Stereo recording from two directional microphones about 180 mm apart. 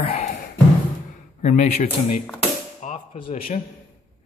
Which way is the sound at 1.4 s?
40° left (ahead or behind).